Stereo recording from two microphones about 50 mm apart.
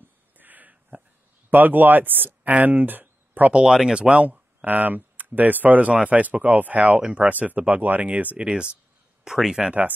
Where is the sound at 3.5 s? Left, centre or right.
Centre.